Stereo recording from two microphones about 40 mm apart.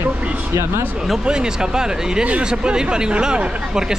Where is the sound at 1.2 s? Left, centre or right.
Centre.